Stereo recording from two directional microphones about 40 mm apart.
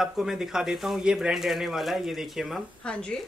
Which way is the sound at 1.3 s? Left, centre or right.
Centre.